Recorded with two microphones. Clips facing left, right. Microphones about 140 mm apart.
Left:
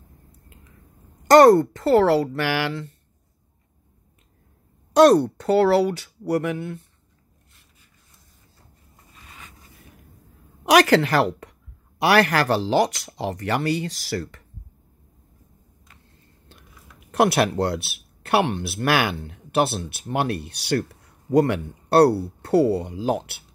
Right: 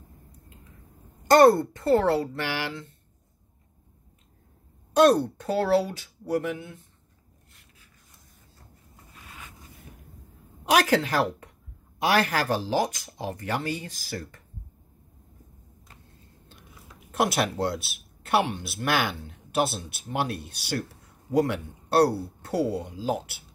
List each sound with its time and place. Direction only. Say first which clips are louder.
1.2 s a woman's voice: left 5 dB; 90° left
4.9 s speech: left 5 dB; 80° left
9.1 s a sound: even; 5° right (ahead or behind)
10.6 s a woman's voice: left 6 dB; 85° left
17.2 s speech: left 6 dB; 65° left (ahead or behind)